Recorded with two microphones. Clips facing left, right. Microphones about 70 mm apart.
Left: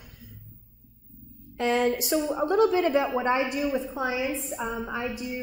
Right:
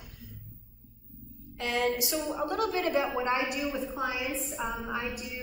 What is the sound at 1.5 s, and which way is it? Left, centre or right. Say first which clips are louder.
A woman's voice: left 5 dB; left.